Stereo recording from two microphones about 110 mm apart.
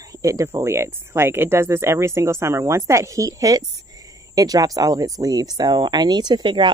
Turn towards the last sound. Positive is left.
turn(degrees=-45)  # may be behind; listen again after turning